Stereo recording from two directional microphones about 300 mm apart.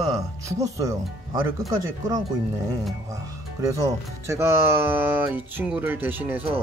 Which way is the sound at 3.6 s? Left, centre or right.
Centre.